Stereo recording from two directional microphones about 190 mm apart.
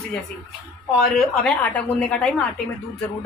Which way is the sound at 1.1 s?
5° left (ahead or behind).